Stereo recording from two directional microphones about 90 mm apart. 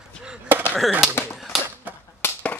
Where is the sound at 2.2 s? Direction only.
15° left (ahead or behind).